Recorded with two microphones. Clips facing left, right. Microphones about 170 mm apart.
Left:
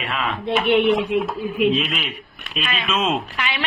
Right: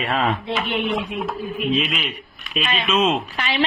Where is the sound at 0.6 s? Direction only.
70° left (ahead or behind).